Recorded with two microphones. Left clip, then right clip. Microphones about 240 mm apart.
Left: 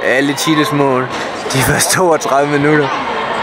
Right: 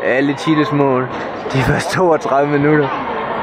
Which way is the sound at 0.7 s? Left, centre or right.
Centre.